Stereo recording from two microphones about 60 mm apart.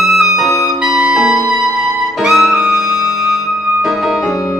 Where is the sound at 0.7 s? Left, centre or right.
Centre.